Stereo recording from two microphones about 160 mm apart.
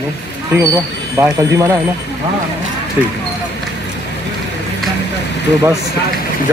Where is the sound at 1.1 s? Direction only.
20° right (ahead or behind).